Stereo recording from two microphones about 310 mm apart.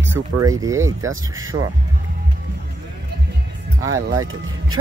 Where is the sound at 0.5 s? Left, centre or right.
Centre.